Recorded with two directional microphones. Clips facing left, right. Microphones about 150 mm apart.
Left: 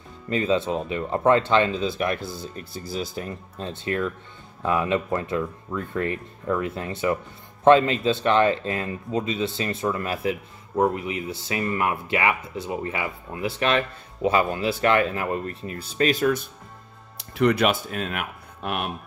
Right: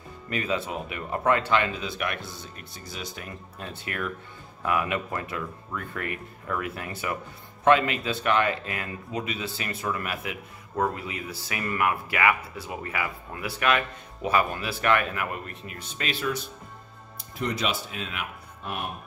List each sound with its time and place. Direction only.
0.3 s speech: 25° left (ahead or behind); by 16.4 s 45° left (ahead or behind)
17.2 s speech: 65° left (ahead or behind); by 18.2 s 50° left (ahead or behind)
18.6 s speech: 75° left (ahead or behind)